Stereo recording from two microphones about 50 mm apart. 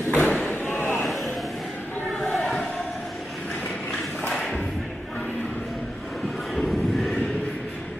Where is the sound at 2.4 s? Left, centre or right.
Centre.